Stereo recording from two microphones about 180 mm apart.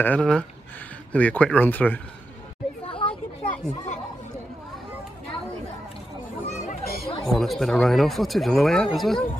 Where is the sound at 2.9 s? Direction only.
30° left (ahead or behind).